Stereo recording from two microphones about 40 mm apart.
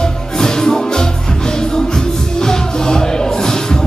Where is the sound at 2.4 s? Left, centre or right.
Centre.